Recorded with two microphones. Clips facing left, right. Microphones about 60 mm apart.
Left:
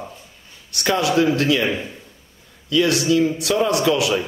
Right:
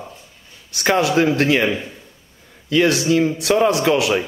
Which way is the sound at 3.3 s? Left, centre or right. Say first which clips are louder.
Right 3 dB; right.